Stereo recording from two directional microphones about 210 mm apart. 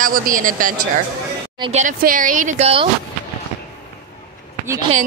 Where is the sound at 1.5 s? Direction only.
25° right (ahead or behind).